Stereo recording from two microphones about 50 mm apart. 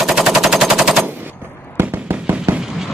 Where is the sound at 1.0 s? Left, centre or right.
Right.